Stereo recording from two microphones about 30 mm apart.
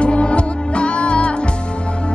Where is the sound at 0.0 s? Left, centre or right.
Left.